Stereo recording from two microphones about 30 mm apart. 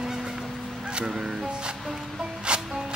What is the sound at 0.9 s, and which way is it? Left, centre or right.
Speech, right.